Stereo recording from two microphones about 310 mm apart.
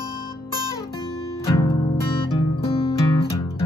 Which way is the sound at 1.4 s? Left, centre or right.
Centre.